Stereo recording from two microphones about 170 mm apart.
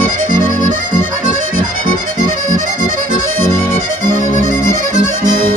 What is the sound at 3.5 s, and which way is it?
Music, 15° left (ahead or behind).